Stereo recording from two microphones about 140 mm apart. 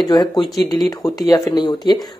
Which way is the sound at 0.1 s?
30° left (ahead or behind).